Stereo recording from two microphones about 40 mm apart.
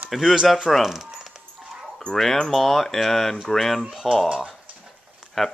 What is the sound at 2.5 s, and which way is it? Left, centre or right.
Speech, centre.